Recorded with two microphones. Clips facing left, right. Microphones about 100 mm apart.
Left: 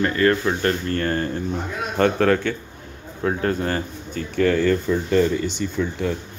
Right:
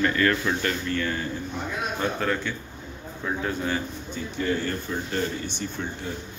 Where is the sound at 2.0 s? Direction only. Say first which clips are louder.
Left 11 dB; 80° left.